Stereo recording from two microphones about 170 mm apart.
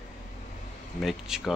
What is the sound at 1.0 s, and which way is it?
Speech, centre (ahead or behind).